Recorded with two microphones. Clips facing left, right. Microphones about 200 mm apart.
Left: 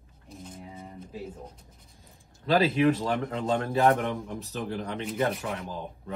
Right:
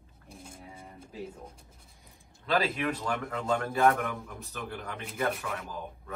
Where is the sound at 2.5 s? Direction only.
30° left (ahead or behind).